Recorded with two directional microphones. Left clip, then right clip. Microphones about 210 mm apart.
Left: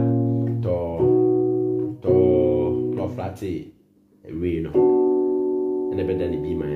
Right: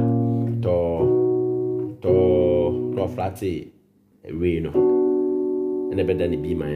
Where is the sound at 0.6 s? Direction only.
50° right (ahead or behind).